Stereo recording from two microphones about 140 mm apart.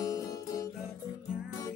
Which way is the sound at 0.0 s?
25° left (ahead or behind).